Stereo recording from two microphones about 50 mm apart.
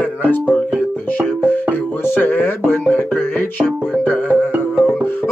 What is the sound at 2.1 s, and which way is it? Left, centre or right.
Music, left.